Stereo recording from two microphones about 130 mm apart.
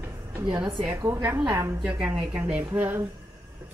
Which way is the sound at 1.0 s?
20° right (ahead or behind).